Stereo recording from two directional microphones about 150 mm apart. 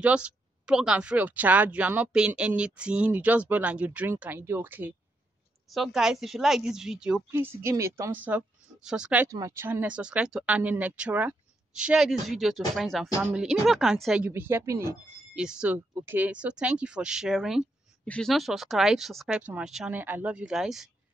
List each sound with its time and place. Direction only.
0.0 s speech: 10° right (ahead or behind)
5.7 s speech: centre (ahead or behind)
7.2 s speech: 15° right (ahead or behind)
9.3 s speech: 20° right (ahead or behind); by 14.2 s centre (ahead or behind)
14.2 s speech: 15° right (ahead or behind)
15.3 s speech: 5° right (ahead or behind)